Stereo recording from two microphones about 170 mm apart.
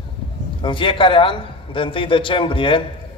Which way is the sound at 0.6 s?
30° left (ahead or behind).